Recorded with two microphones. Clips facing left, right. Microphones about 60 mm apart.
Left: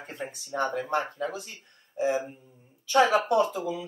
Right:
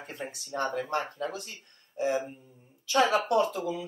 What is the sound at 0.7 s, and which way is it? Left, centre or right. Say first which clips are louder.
Speech: left 1 dB; centre.